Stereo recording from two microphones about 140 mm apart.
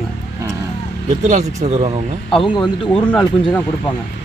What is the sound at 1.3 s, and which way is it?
Speech, 55° right (ahead or behind).